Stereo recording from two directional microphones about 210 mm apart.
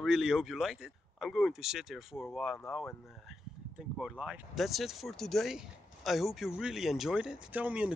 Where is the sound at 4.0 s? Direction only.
5° right (ahead or behind).